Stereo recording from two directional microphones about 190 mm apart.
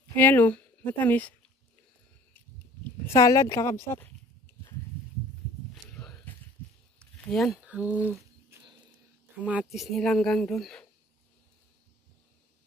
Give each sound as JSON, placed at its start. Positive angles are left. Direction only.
{"t": 0.1, "sound": "speech", "side_deg": 10}
{"t": 3.1, "sound": "speech", "side_deg": 15}
{"t": 5.9, "sound": "walk", "side_deg": 5}
{"t": 7.0, "sound": "a sound", "side_deg": 0}
{"t": 9.4, "sound": "speech", "side_deg": -5}